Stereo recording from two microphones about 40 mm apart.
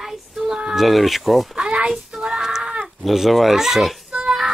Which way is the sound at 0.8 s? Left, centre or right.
Centre.